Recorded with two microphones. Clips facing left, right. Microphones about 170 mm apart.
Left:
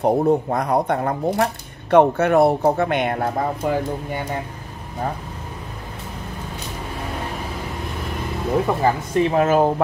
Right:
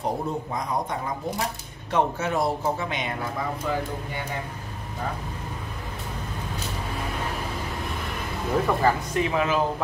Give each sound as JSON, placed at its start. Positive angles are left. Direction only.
{"t": 0.0, "sound": "speech", "side_deg": 65}
{"t": 8.6, "sound": "speech", "side_deg": 25}
{"t": 9.3, "sound": "speech", "side_deg": 45}